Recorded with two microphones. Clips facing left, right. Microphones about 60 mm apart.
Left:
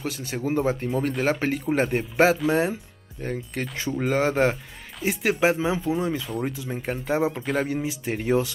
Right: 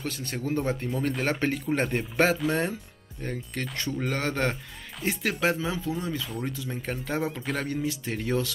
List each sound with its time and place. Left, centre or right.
0.0 s speech: centre